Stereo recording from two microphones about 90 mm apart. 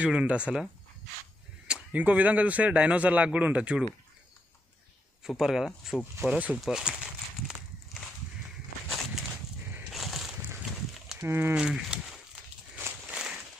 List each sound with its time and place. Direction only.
0.0 s a man's voice: 15° right (ahead or behind)
1.7 s a man's voice: 15° right (ahead or behind)
5.2 s speech: 5° right (ahead or behind)
6.2 s a man's voice: 15° right (ahead or behind)
6.6 s walk: 10° right (ahead or behind)
9.9 s boat: centre (ahead or behind)
11.1 s speech: 25° right (ahead or behind)
11.5 s speech: 10° right (ahead or behind)
13.1 s a sound: 10° right (ahead or behind)